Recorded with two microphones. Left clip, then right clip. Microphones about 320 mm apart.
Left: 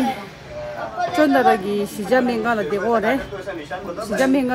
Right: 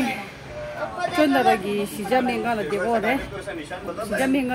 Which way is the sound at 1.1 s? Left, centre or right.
Centre.